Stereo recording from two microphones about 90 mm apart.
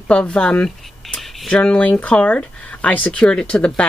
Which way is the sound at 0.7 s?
Centre (ahead or behind).